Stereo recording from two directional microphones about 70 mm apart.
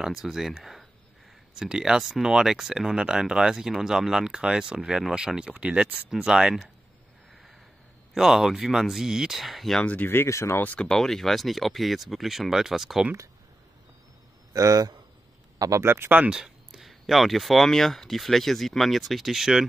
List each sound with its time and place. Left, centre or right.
0.0 s speech: centre
1.6 s speech: centre
8.1 s speech: centre
9.8 s speech: left
10.2 s speech: left
10.6 s speech: left
10.9 s speech: centre
14.5 s a man's voice: right
15.8 s speech: right
16.2 s speech: centre